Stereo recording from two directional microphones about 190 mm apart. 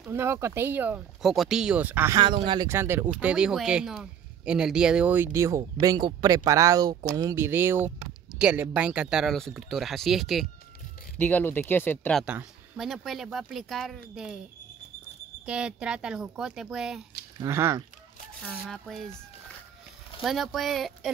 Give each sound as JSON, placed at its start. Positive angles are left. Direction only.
{"t": 0.1, "sound": "speech", "side_deg": -15}
{"t": 2.1, "sound": "speech", "side_deg": -25}
{"t": 2.7, "sound": "speech", "side_deg": -10}
{"t": 12.3, "sound": "speech", "side_deg": -5}
{"t": 15.4, "sound": "speech", "side_deg": -5}
{"t": 17.4, "sound": "speech", "side_deg": -15}
{"t": 18.5, "sound": "speech", "side_deg": 0}
{"t": 20.2, "sound": "speech", "side_deg": 0}